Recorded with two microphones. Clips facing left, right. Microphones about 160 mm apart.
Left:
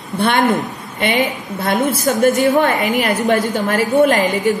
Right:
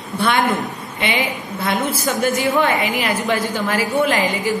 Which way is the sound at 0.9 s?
45° left (ahead or behind).